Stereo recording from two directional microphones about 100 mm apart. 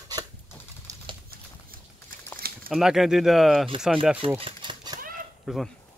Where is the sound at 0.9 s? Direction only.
35° right (ahead or behind).